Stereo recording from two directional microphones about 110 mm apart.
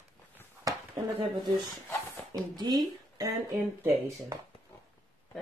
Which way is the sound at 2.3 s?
40° right (ahead or behind).